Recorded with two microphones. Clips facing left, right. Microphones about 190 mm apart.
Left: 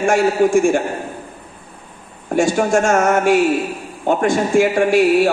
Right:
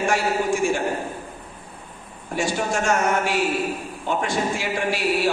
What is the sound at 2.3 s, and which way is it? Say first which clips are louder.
A man's voice: left 9 dB; 50° left (ahead or behind).